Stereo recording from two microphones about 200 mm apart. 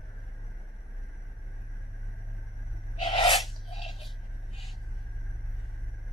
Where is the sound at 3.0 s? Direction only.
25° left (ahead or behind).